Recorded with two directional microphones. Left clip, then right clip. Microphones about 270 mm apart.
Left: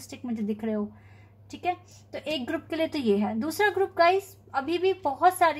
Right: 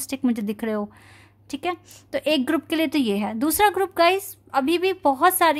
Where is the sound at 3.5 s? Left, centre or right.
Right.